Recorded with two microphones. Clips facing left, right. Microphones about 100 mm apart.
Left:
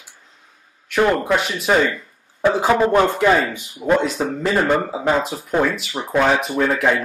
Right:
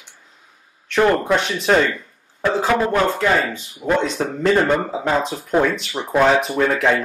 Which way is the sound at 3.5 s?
5° left (ahead or behind).